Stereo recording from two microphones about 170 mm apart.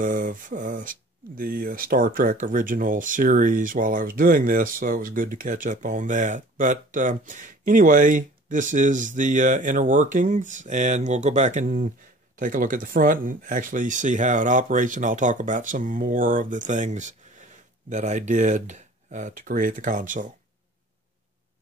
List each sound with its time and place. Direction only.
0.0 s speech: 50° right (ahead or behind)